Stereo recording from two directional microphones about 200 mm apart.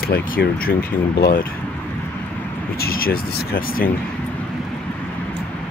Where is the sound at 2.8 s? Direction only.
45° left (ahead or behind).